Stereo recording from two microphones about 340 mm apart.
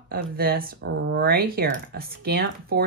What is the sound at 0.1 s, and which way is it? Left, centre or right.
Speech, right.